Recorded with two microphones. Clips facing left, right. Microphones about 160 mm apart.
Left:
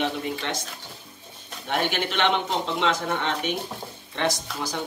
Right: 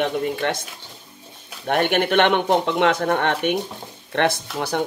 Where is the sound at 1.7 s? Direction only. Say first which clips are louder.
Right 7 dB; 55° right (ahead or behind).